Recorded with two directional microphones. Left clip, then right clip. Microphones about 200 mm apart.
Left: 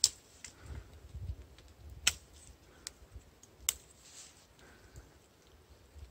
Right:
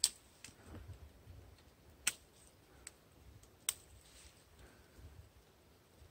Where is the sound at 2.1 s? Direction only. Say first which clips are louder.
Left 8 dB; 20° left (ahead or behind).